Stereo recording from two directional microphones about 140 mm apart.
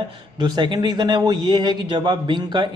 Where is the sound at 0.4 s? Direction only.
30° right (ahead or behind).